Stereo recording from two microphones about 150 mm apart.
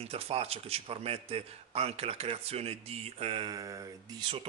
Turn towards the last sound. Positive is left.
turn(degrees=-30)  # may be behind; listen again after turning